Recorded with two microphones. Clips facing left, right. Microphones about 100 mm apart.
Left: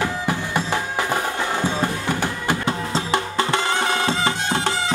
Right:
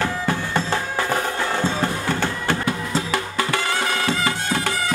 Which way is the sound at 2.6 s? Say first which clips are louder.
Even; 25° left (ahead or behind).